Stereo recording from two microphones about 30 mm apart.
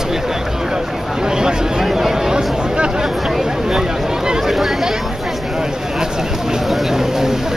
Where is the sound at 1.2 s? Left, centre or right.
Right.